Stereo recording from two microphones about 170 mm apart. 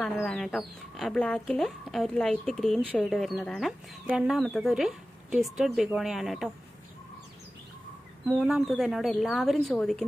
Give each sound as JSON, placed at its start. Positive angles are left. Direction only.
{"t": 0.0, "sound": "speech", "side_deg": 0}
{"t": 8.4, "sound": "speech", "side_deg": -5}